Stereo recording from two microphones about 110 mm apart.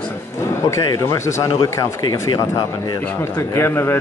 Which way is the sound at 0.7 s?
30° left (ahead or behind).